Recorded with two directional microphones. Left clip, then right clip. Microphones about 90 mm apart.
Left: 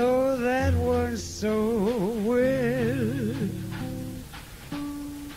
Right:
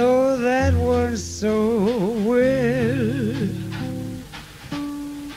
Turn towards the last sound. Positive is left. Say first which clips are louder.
# right 5 dB
turn(degrees=30)  # may be behind; listen again after turning